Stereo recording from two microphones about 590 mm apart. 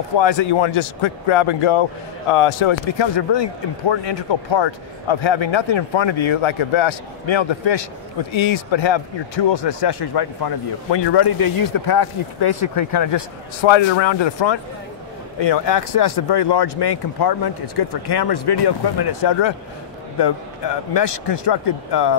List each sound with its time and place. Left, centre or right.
0.2 s speech: left
20.9 s speech: left